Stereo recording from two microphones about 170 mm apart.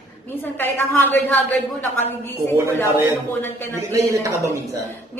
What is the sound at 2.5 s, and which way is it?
Speech, 15° right (ahead or behind).